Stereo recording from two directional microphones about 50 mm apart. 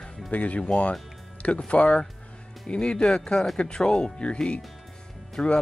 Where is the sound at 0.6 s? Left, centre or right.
Centre.